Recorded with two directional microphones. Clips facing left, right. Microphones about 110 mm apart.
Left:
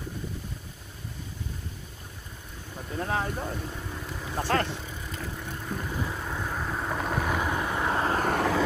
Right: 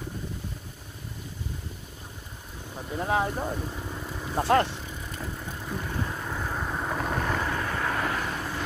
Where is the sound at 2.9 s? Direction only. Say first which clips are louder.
Right 3 dB; 15° right (ahead or behind).